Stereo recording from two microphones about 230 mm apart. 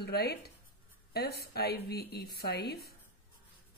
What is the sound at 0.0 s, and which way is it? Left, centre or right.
Speech, left.